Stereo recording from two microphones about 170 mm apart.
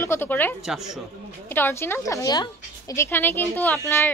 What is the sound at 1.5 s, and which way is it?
A woman's voice, 15° left (ahead or behind).